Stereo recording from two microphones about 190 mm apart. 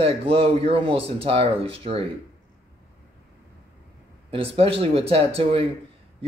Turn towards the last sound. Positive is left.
turn(degrees=-30)  # may be behind; listen again after turning